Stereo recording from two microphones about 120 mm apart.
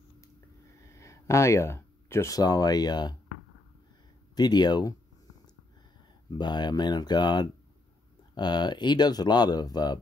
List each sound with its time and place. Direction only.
0.8 s speech: 25° left (ahead or behind)
4.4 s speech: 35° left (ahead or behind)
6.3 s speech: 35° left (ahead or behind)